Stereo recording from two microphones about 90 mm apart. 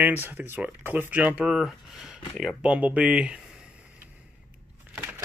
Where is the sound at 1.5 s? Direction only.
Centre (ahead or behind).